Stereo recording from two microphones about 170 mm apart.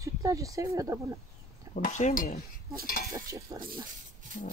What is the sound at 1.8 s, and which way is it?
Speech, 50° left (ahead or behind).